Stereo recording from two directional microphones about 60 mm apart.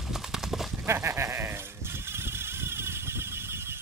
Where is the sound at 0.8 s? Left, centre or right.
Right.